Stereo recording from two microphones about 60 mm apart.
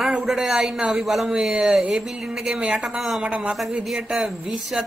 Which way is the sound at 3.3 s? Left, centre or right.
Centre.